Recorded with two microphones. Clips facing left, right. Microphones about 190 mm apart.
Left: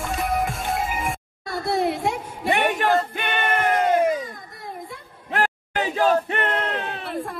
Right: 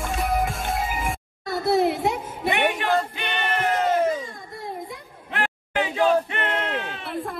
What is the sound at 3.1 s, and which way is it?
Music, 50° left (ahead or behind).